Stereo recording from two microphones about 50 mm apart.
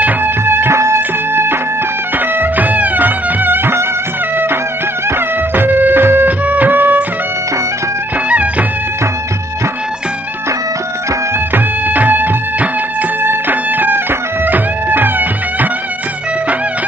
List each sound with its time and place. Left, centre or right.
0.5 s music: right
0.7 s music: right
2.1 s music: right
5.6 s music: right
6.4 s music: right
8.3 s music: right
11.5 s music: right